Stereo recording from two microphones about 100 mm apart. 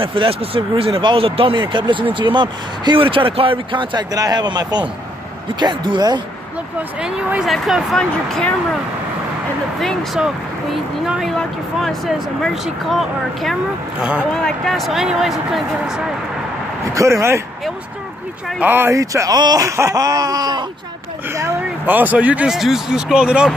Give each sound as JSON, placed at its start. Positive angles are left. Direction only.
{"t": 0.0, "sound": "speech", "side_deg": -65}
{"t": 4.1, "sound": "speech", "side_deg": -40}
{"t": 7.0, "sound": "speech", "side_deg": -10}
{"t": 9.8, "sound": "speech", "side_deg": 0}
{"t": 13.9, "sound": "speech", "side_deg": -10}
{"t": 14.3, "sound": "speech", "side_deg": 5}
{"t": 16.9, "sound": "speech", "side_deg": -30}
{"t": 18.6, "sound": "speech", "side_deg": -20}
{"t": 18.9, "sound": "speech", "side_deg": -30}
{"t": 21.8, "sound": "speech", "side_deg": -15}